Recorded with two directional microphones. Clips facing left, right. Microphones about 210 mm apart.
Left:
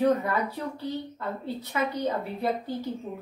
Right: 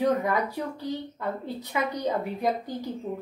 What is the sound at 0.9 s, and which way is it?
A woman's voice, 15° right (ahead or behind).